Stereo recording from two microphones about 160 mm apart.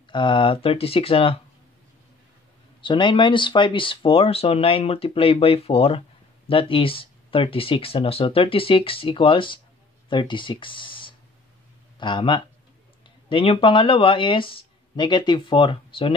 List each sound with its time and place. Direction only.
0.1 s speech: 30° left (ahead or behind)
2.8 s speech: 30° left (ahead or behind)